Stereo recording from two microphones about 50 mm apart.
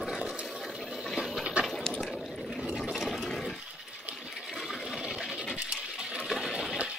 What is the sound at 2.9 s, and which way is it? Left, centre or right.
Water, centre.